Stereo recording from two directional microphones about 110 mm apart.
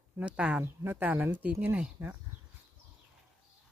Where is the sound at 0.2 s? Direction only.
10° right (ahead or behind).